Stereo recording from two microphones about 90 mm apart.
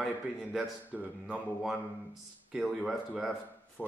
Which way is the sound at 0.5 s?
15° right (ahead or behind).